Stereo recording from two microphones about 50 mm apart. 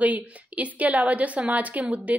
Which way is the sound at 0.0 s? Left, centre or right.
Right.